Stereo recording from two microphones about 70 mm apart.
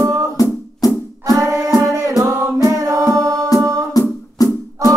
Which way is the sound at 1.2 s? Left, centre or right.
Right.